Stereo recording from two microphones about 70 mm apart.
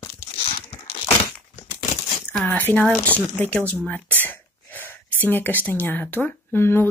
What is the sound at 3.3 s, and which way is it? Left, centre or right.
Speech, left.